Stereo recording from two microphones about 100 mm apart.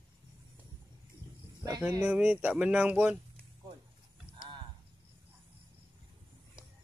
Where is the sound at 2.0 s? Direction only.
15° right (ahead or behind).